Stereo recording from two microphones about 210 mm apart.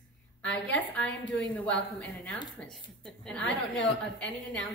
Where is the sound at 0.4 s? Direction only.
60° left (ahead or behind).